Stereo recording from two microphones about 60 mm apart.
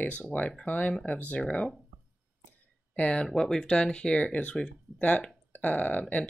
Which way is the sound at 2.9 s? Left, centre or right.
Centre.